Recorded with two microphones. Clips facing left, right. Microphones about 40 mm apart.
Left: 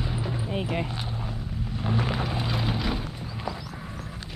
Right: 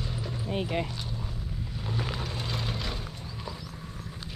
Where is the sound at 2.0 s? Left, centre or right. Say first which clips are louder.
Left 6 dB; centre.